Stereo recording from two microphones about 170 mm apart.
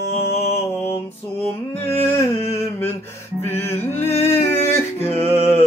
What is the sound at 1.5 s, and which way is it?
Music, 10° left (ahead or behind).